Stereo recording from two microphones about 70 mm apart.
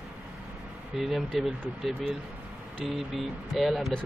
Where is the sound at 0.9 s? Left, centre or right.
Centre.